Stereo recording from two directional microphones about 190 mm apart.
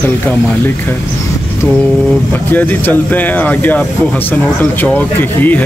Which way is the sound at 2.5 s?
10° left (ahead or behind).